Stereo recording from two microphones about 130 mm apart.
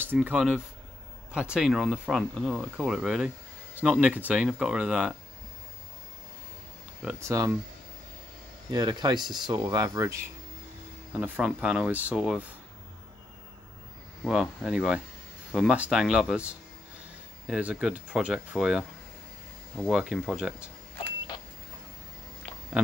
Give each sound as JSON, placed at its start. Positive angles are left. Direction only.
{"t": 0.0, "sound": "speech", "side_deg": -15}
{"t": 7.2, "sound": "speech", "side_deg": -25}
{"t": 8.6, "sound": "speech", "side_deg": -30}
{"t": 11.1, "sound": "speech", "side_deg": -10}
{"t": 14.2, "sound": "speech", "side_deg": -5}
{"t": 19.9, "sound": "speech", "side_deg": 0}